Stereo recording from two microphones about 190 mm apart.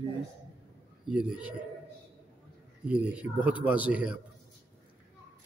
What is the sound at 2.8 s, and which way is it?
Speech, 5° right (ahead or behind).